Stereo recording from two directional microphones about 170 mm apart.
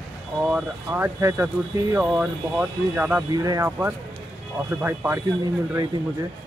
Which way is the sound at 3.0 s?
10° right (ahead or behind).